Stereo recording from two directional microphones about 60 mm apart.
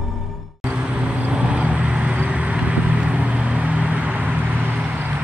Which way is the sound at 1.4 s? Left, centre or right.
Centre.